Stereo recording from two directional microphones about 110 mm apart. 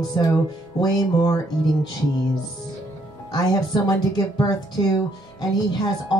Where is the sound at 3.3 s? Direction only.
40° left (ahead or behind).